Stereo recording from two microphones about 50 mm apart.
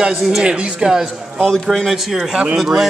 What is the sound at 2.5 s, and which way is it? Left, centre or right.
Speech, centre.